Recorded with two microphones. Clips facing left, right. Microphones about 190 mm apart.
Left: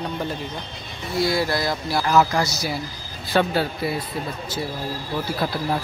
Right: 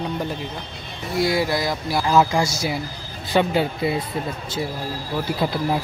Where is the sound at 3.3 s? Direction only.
15° right (ahead or behind).